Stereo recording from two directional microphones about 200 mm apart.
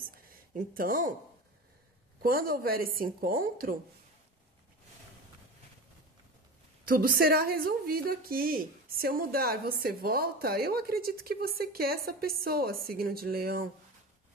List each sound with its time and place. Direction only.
0.1 s a sound: 45° right (ahead or behind)
2.2 s a woman's voice: 45° right (ahead or behind)
6.9 s a woman's voice: 50° right (ahead or behind)